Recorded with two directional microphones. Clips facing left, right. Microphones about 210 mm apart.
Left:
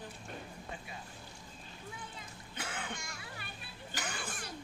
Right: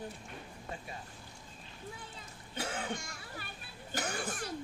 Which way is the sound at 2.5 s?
40° right (ahead or behind).